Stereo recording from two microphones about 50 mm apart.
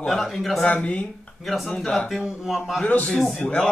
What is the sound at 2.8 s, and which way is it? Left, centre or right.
Speech, left.